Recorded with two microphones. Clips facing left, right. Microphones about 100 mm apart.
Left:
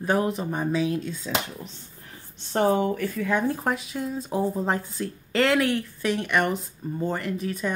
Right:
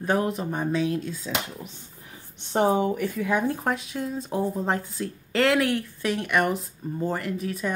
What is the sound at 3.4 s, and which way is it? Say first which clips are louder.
Speech: even; centre (ahead or behind).